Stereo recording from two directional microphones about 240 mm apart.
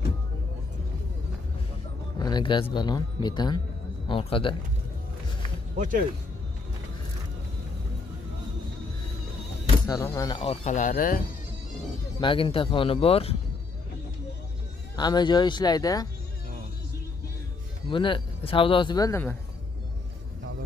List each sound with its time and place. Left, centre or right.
2.1 s speech: centre
5.8 s speech: right
9.8 s speech: centre; by 11.2 s left
12.2 s speech: left
15.0 s speech: centre
17.8 s speech: left